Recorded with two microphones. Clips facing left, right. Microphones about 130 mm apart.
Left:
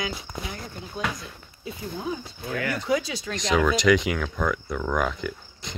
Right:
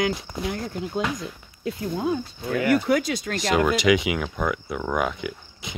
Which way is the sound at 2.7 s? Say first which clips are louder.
Right 5 dB; 65° right (ahead or behind).